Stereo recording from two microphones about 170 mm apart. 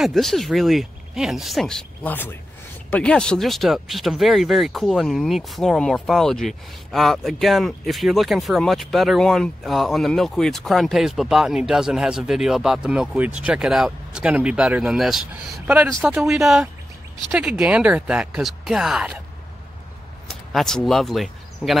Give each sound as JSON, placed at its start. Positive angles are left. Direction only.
{"t": 0.0, "sound": "speech", "side_deg": 0}
{"t": 20.2, "sound": "speech", "side_deg": 0}